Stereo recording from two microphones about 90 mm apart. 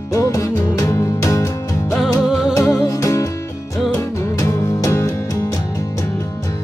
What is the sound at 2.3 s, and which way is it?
Music, 5° right (ahead or behind).